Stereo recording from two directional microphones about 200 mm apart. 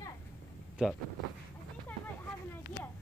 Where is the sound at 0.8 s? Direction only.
5° right (ahead or behind).